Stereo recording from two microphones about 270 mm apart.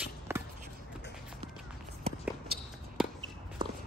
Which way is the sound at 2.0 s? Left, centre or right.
Right.